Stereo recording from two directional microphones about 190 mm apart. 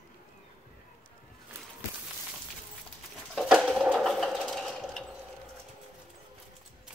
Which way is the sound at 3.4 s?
Centre (ahead or behind).